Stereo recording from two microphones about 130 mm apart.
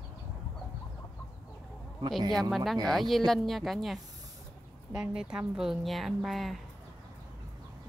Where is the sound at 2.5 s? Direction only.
Centre (ahead or behind).